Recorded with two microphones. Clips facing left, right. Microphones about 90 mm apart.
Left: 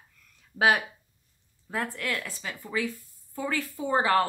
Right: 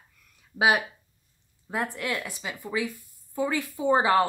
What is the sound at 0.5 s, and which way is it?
Speech, 10° right (ahead or behind).